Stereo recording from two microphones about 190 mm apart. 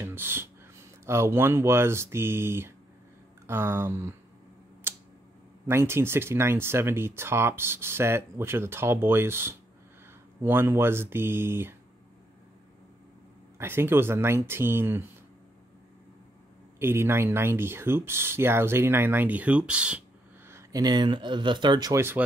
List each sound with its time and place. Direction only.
0.0 s a sound: 10° right (ahead or behind)
1.0 s speech: 15° right (ahead or behind)
4.9 s tick: 15° right (ahead or behind)
5.7 s speech: 15° right (ahead or behind)
13.6 s speech: 10° right (ahead or behind)
16.8 s speech: 10° right (ahead or behind)
20.4 s speech: 15° right (ahead or behind)